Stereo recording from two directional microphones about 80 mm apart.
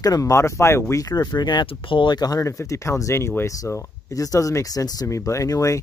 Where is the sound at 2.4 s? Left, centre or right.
Left.